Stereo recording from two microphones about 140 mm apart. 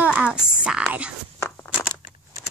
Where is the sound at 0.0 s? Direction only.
5° right (ahead or behind).